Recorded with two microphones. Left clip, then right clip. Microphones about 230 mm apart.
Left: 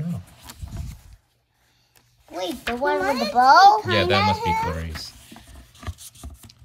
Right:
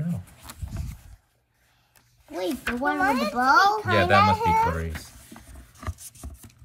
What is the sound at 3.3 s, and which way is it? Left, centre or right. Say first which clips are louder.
Speech: left 8 dB; left.